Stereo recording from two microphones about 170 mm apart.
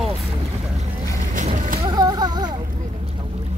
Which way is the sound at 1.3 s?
50° right (ahead or behind).